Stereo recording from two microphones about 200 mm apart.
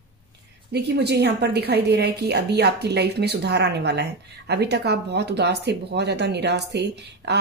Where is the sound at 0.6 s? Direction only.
55° right (ahead or behind).